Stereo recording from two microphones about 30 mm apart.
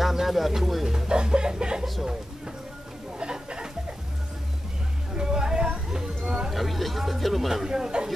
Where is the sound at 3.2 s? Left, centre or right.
Right.